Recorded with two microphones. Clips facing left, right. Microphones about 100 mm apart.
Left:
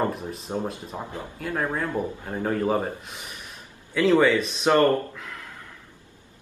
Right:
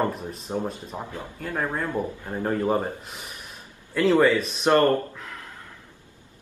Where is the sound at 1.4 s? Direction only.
5° left (ahead or behind).